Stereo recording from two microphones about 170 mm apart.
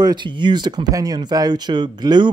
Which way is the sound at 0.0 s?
25° right (ahead or behind).